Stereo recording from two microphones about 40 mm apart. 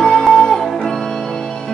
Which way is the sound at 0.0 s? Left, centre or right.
Centre.